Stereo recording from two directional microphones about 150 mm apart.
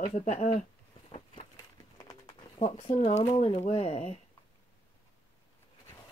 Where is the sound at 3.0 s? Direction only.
50° left (ahead or behind).